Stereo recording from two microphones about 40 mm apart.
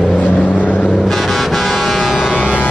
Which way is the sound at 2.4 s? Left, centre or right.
Left.